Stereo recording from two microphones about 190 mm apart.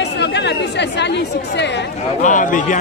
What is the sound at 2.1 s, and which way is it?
Speech, 40° left (ahead or behind).